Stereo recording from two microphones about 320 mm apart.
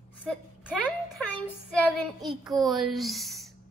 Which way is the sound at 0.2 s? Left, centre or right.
Centre.